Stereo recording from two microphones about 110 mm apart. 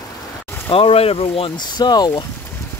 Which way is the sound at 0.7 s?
60° left (ahead or behind).